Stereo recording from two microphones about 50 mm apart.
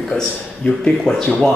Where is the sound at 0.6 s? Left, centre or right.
Left.